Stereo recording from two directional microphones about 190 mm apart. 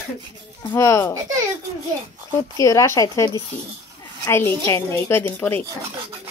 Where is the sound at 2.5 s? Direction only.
15° left (ahead or behind).